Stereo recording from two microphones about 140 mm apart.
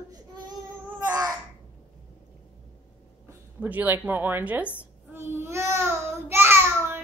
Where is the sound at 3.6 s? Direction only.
10° right (ahead or behind).